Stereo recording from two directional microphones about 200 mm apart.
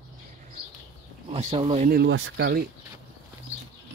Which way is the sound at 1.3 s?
30° right (ahead or behind).